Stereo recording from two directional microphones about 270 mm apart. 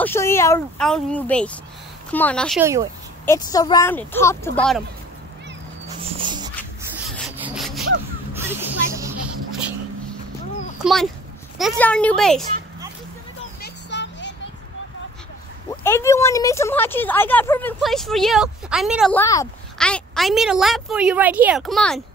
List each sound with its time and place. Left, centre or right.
0.0 s speech: centre
2.6 s speech: centre
3.3 s speech: centre
6.0 s dog: centre
7.2 s sawing: centre
8.3 s music: centre
10.8 s speech: centre
13.6 s music: left
15.8 s speech: centre